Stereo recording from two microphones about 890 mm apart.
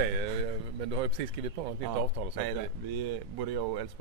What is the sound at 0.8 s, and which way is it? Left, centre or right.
Speech, right.